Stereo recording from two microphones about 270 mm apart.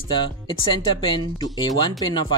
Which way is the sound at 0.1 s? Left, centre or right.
Centre.